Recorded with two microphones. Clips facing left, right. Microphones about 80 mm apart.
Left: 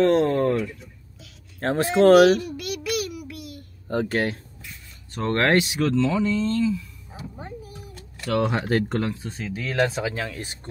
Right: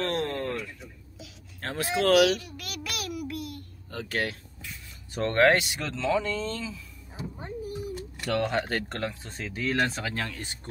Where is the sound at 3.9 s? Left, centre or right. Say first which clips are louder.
Left 12 dB; left.